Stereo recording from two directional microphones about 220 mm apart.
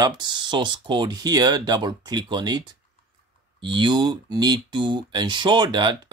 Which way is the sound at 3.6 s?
20° right (ahead or behind).